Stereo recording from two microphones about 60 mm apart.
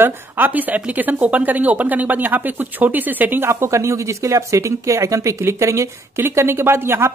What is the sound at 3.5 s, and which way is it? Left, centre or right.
Speech, right.